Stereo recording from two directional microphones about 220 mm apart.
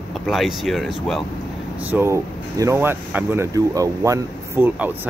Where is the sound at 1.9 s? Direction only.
10° right (ahead or behind).